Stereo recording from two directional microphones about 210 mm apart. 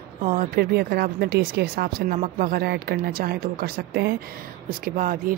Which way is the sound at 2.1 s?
40° right (ahead or behind).